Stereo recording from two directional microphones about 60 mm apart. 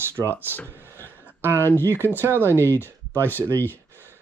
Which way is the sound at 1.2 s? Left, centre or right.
Right.